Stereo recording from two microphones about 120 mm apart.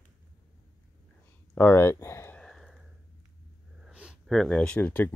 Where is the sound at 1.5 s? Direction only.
15° left (ahead or behind).